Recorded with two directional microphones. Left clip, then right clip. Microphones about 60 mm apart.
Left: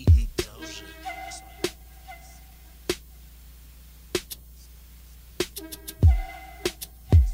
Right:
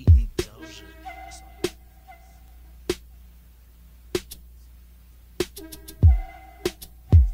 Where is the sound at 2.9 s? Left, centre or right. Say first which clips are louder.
Right 1 dB; left.